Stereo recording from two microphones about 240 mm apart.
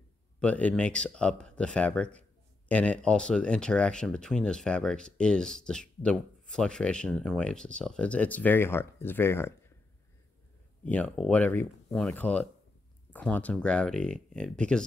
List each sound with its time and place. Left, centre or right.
0.4 s speech: centre
10.8 s speech: centre